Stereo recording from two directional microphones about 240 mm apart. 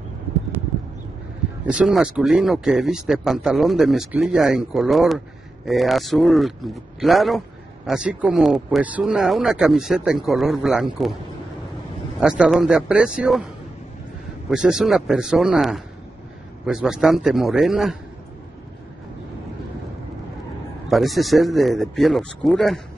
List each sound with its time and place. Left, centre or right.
1.7 s a man's voice: centre
12.2 s a man's voice: centre
14.5 s a man's voice: centre
20.9 s a man's voice: centre